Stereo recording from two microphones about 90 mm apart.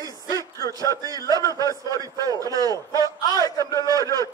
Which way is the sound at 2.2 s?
45° right (ahead or behind).